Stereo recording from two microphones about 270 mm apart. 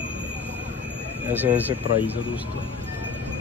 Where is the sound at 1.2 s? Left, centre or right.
Centre.